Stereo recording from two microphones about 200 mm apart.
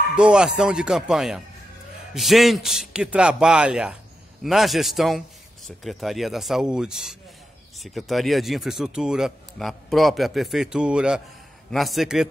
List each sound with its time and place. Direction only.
0.1 s a man's voice: 5° right (ahead or behind)